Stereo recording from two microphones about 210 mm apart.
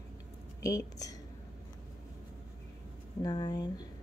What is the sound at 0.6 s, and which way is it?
Speech, 15° left (ahead or behind).